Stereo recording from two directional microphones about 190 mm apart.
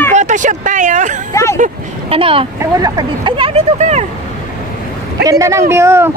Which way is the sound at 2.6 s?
20° right (ahead or behind).